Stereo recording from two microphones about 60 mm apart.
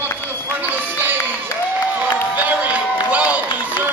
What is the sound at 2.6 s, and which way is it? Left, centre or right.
Run, right.